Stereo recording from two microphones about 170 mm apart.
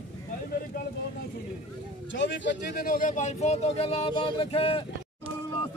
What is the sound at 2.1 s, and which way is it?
Speech, 90° left.